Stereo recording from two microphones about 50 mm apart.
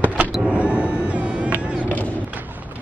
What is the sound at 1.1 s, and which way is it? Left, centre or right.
Cat, right.